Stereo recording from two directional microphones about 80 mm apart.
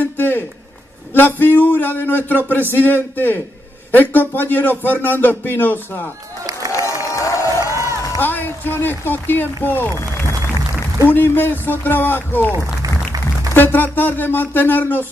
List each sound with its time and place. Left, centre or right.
0.0 s a sound: left
1.1 s music: left
6.9 s crowd: left
8.2 s speech: left
11.1 s music: left
12.5 s a sound: right
13.5 s music: left